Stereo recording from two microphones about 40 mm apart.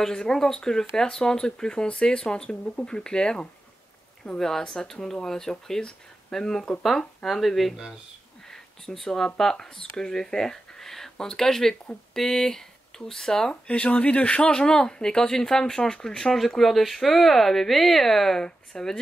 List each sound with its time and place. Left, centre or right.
0.0 s speech: centre
13.7 s speech: left; by 18.9 s centre